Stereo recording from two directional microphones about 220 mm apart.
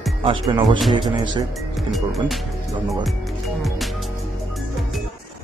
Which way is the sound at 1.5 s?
Centre (ahead or behind).